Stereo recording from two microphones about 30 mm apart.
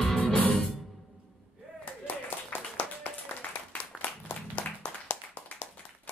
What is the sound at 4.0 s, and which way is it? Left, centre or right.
Applause, left.